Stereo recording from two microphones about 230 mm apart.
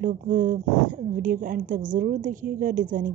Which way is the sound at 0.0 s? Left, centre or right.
Right.